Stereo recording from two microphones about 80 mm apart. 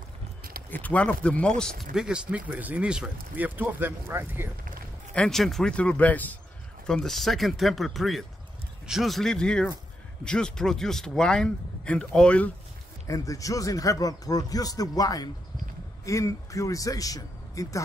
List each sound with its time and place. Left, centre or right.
0.7 s speech: left
2.0 s speech: centre; by 4.5 s right
5.1 s speech: centre
6.9 s speech: centre
13.0 s speech: left
16.1 s speech: left